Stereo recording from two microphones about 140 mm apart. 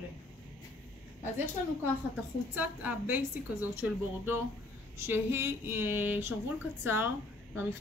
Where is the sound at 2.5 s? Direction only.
10° right (ahead or behind).